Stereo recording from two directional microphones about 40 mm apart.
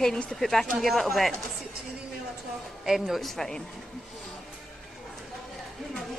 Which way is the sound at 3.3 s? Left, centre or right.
Centre.